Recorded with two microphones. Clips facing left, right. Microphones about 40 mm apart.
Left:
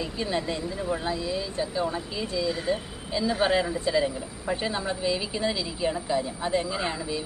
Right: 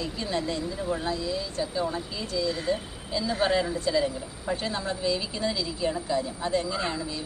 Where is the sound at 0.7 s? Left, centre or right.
Left.